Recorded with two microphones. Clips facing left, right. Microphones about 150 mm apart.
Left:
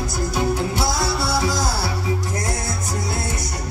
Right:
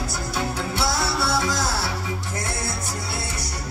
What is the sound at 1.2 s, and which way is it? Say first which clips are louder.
Music: left 1 dB; 10° left (ahead or behind).